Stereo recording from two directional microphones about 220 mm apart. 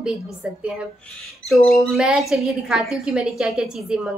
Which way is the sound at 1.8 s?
Centre (ahead or behind).